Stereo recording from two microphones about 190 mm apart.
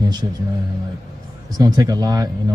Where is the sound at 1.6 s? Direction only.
20° right (ahead or behind).